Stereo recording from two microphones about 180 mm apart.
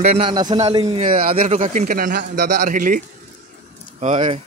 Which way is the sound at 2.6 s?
50° right (ahead or behind).